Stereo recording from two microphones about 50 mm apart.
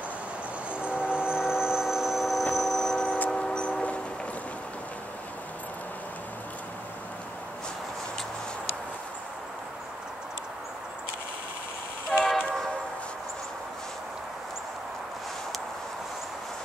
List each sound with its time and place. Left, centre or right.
0.7 s train: right; by 4.0 s left
12.1 s train: centre